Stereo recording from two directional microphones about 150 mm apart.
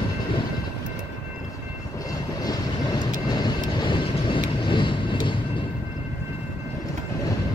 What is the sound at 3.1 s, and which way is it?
Vehicle, 30° left (ahead or behind).